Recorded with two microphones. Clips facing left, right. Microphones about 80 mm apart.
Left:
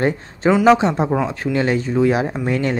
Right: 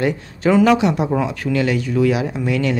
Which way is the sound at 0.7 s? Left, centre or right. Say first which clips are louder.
Left 2 dB; left.